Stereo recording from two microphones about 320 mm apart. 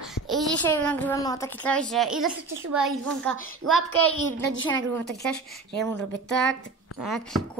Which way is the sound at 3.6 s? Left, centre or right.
Right.